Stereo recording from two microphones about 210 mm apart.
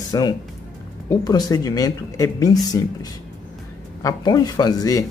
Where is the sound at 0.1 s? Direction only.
20° left (ahead or behind).